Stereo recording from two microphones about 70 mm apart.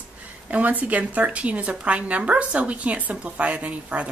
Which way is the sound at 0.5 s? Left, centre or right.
Right.